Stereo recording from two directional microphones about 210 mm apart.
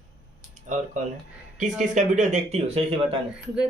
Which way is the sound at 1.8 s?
35° right (ahead or behind).